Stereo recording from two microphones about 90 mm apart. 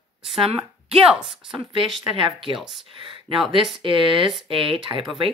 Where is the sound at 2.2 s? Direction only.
65° right (ahead or behind).